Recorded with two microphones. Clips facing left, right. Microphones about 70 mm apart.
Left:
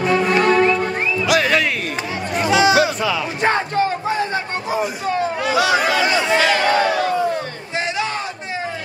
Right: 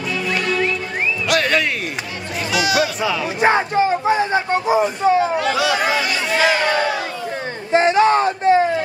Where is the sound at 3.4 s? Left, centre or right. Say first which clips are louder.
Right 3 dB; centre.